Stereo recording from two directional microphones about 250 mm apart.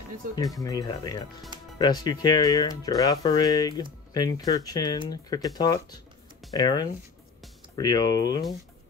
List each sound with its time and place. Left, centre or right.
0.4 s speech: centre